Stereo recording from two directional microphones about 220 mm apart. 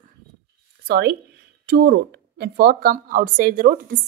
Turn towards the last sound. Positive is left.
turn(degrees=-40)  # may be behind; listen again after turning